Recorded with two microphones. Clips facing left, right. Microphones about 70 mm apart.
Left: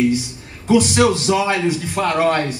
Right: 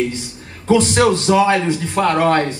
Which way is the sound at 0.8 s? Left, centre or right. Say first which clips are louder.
Right 1 dB; right.